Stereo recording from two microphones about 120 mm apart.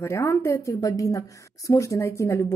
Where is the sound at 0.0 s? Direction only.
20° left (ahead or behind).